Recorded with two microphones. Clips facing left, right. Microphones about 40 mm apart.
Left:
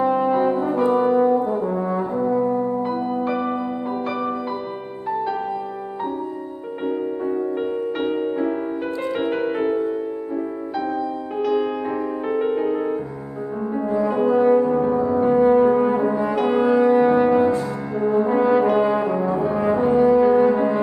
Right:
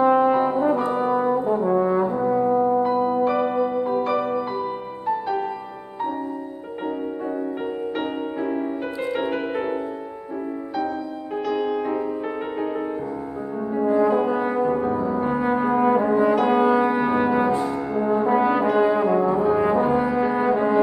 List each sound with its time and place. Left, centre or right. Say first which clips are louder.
0.0 s brass instrument: right 2 dB; centre
0.4 s brass instrument: left 1 dB; centre
2.8 s music: right 3 dB; centre
8.0 s music: left 4 dB; centre
11.3 s music: left 2 dB; centre
13.7 s brass instrument: right 2 dB; centre